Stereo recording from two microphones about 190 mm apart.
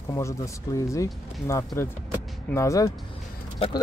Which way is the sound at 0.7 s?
15° left (ahead or behind).